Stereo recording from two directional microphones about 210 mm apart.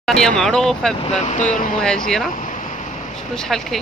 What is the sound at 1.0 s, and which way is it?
Speech, 30° left (ahead or behind).